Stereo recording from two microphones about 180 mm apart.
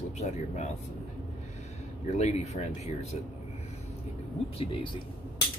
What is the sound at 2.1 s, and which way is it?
Speech, 35° left (ahead or behind).